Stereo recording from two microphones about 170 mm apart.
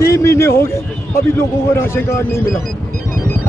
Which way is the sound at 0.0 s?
15° left (ahead or behind).